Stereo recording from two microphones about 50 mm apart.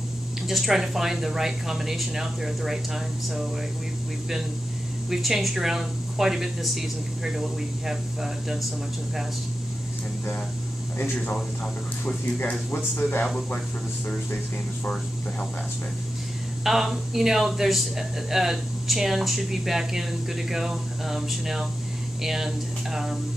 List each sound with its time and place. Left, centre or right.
0.5 s speech: centre
5.1 s speech: centre
12.7 s speech: left
16.6 s speech: centre